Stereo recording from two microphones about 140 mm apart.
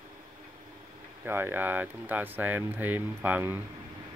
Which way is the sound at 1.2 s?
15° right (ahead or behind).